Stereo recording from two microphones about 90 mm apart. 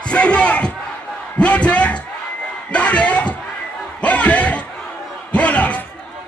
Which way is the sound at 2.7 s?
15° left (ahead or behind).